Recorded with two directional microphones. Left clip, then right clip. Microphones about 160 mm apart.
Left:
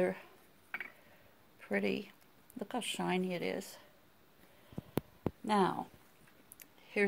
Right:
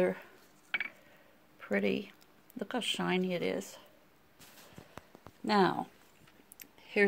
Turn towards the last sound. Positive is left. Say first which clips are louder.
# right 4 dB
turn(degrees=-35)  # may be behind; listen again after turning